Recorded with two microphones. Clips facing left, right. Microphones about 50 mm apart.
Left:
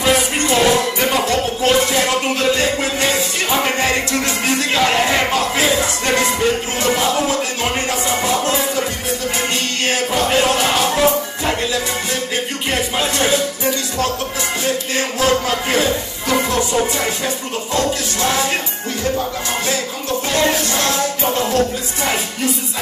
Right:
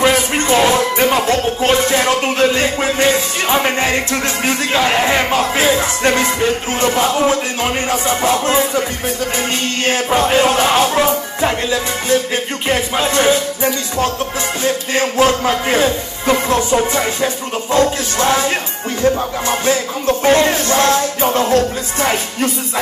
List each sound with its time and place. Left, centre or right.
0.0 s music: right
10.1 s music: right
12.6 s music: right
15.1 s music: right
20.2 s music: right